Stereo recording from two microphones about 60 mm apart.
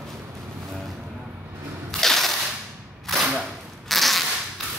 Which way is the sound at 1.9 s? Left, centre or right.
Centre.